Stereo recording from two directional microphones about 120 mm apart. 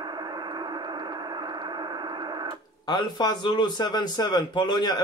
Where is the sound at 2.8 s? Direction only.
35° left (ahead or behind).